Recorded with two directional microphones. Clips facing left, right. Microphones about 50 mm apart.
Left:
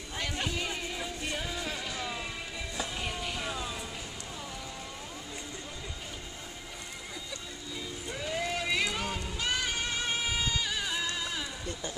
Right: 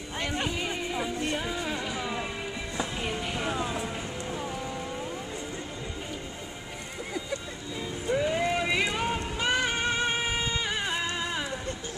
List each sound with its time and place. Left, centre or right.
0.2 s a sound: centre
1.3 s music: centre; by 3.9 s right
8.1 s vehicle: centre
9.2 s music: right